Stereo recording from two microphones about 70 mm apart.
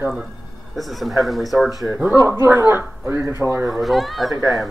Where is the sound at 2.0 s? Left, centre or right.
Right.